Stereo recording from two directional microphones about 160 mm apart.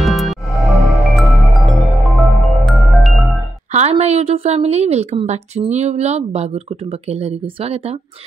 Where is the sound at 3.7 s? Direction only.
40° right (ahead or behind).